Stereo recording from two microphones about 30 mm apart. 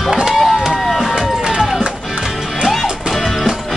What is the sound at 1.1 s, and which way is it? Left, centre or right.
Run, centre.